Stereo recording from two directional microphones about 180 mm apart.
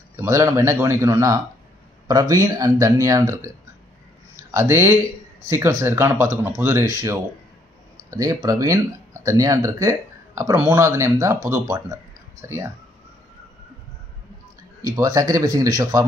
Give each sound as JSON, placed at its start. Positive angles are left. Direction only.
{"t": 0.1, "sound": "speech", "side_deg": -15}
{"t": 14.8, "sound": "speech", "side_deg": -20}